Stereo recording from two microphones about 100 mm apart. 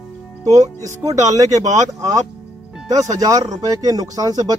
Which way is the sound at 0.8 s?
35° right (ahead or behind).